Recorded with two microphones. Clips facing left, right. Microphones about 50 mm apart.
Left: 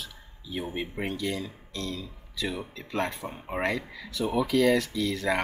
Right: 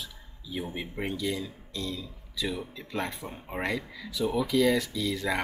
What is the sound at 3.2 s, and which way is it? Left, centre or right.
Speech, centre.